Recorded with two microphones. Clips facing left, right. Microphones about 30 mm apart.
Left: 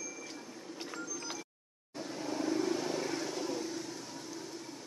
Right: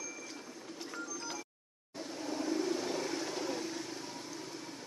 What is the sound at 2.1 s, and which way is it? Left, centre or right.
Vehicle, centre.